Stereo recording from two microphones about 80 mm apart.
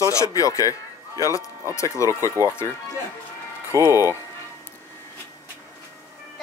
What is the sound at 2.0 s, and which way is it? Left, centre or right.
Speech, right.